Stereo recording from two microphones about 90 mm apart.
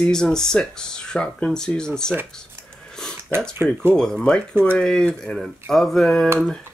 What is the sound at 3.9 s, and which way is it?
Speech, 10° left (ahead or behind).